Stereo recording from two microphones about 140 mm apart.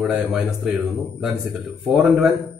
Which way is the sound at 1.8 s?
Centre (ahead or behind).